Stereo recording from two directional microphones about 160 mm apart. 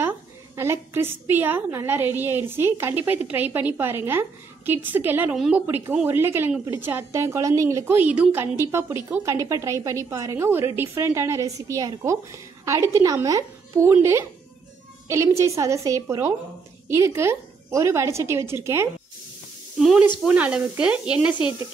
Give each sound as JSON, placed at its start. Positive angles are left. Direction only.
{"t": 0.6, "sound": "a woman's voice", "side_deg": -15}
{"t": 19.8, "sound": "a woman's voice", "side_deg": -5}